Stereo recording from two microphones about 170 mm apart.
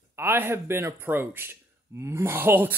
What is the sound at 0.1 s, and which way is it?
Speech, 15° right (ahead or behind).